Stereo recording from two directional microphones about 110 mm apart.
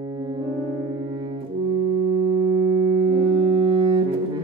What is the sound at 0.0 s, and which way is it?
Brass instrument, 45° right (ahead or behind).